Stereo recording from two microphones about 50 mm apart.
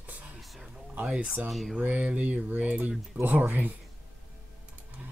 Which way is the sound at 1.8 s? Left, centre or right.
Right.